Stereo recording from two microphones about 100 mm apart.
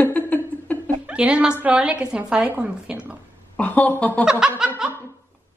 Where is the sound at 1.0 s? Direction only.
10° right (ahead or behind).